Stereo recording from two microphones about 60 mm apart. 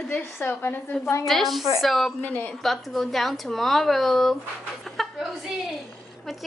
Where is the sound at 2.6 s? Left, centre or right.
Centre.